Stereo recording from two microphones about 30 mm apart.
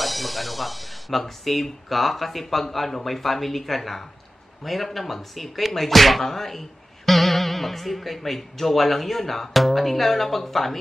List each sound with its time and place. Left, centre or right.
0.0 s speech: centre